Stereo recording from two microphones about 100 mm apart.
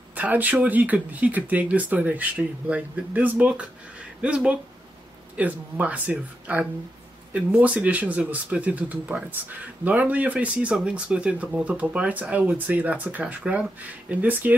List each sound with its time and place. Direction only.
0.1 s speech: 15° right (ahead or behind)